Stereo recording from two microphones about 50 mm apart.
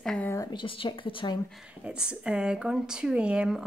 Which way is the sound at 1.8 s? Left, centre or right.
Centre.